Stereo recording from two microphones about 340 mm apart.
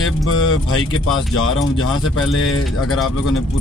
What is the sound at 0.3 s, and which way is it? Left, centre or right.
Speech, left.